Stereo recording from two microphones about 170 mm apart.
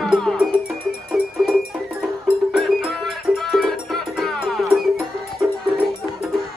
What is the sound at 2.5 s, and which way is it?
Music, centre (ahead or behind).